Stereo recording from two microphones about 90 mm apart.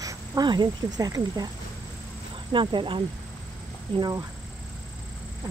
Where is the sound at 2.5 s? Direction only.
65° right (ahead or behind).